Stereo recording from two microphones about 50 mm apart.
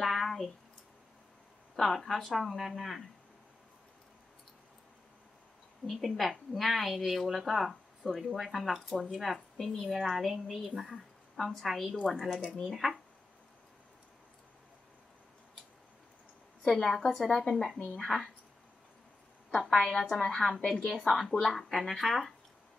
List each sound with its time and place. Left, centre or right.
0.0 s a sound: centre
1.8 s a woman's voice: centre
5.9 s a woman's voice: centre
16.7 s a woman's voice: centre
19.7 s a woman's voice: centre
20.2 s a woman's voice: centre
20.4 s a woman's voice: centre